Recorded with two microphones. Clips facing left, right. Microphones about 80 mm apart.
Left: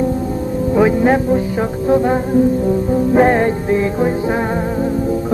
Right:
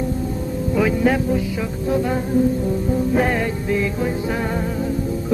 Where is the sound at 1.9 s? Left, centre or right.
Left.